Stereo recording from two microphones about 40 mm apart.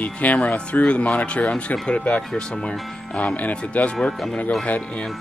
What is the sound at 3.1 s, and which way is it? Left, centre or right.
Speech, left.